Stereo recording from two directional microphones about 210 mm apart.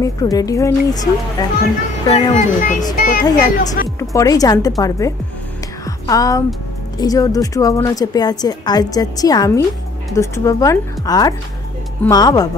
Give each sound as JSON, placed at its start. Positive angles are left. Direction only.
{"t": 0.0, "sound": "a woman's voice", "side_deg": 15}
{"t": 2.1, "sound": "speech", "side_deg": 35}
{"t": 3.3, "sound": "a woman's voice", "side_deg": 20}